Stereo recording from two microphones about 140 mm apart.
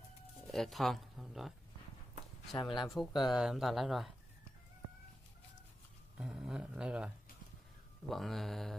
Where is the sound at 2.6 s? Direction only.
35° left (ahead or behind).